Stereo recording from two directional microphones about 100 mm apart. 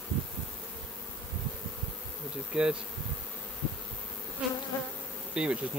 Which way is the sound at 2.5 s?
10° right (ahead or behind).